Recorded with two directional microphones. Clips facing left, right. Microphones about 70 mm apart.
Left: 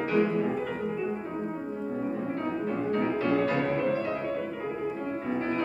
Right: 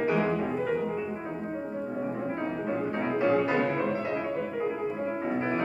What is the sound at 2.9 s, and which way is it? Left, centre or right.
Music, right.